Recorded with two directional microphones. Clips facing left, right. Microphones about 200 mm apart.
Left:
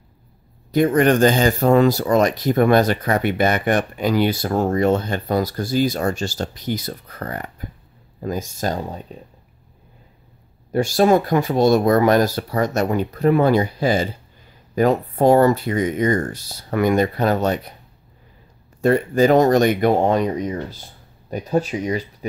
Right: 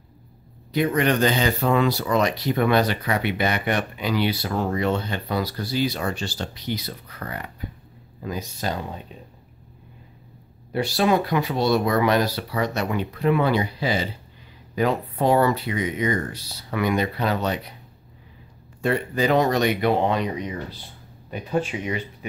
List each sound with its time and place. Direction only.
0.7 s speech: 45° left (ahead or behind)
10.7 s speech: 45° left (ahead or behind)
18.8 s speech: 45° left (ahead or behind)